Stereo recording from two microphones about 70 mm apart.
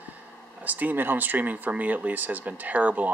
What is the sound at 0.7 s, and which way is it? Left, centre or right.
Speech, right.